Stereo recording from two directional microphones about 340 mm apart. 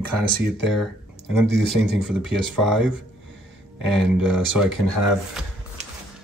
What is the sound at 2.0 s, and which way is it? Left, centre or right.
Speech, centre.